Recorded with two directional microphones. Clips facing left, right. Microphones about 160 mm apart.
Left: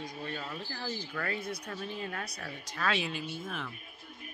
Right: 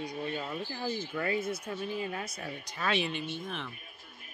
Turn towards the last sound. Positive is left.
turn(degrees=5)  # may be behind; listen again after turning